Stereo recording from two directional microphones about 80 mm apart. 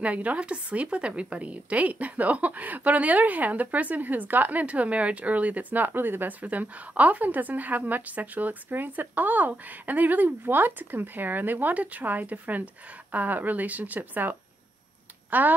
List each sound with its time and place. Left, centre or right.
0.0 s a woman's voice: centre
15.3 s a woman's voice: right